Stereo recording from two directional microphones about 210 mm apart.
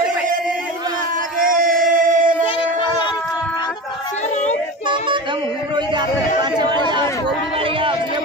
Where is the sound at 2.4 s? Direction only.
25° left (ahead or behind).